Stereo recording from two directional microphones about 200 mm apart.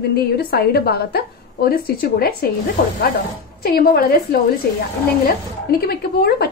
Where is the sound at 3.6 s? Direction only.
50° left (ahead or behind).